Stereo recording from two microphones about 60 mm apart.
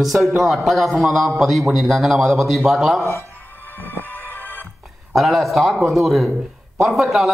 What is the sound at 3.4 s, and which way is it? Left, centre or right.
Music, left.